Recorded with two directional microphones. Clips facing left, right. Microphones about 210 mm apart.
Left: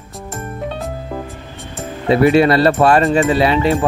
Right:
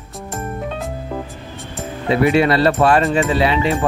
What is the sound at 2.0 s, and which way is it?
Speech, 40° left (ahead or behind).